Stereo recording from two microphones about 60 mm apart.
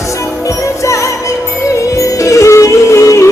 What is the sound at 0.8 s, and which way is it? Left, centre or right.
Music, left.